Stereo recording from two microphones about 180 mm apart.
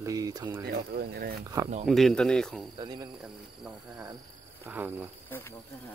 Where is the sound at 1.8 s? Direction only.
Centre (ahead or behind).